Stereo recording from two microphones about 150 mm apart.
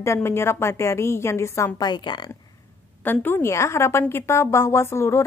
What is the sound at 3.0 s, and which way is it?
A woman's voice, 15° left (ahead or behind).